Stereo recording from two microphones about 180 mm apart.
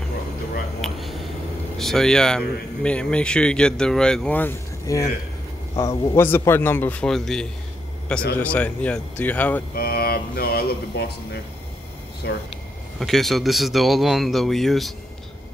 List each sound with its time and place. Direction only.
0.7 s a sound: centre (ahead or behind)
1.8 s a man's voice: centre (ahead or behind)
9.8 s speech: 55° left (ahead or behind)
12.2 s speech: 65° left (ahead or behind)
13.0 s speech: centre (ahead or behind)